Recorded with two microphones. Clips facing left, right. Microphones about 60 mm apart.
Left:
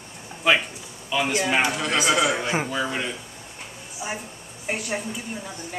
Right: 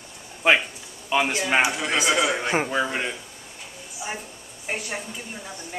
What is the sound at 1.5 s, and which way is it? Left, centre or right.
Speech, centre.